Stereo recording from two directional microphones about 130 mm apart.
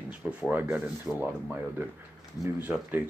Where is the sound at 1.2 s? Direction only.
15° right (ahead or behind).